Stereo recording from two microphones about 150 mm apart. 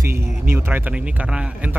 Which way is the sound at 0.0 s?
15° right (ahead or behind).